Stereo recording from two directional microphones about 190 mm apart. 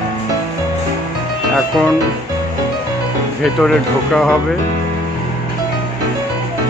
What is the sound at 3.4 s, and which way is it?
Speech, 5° left (ahead or behind).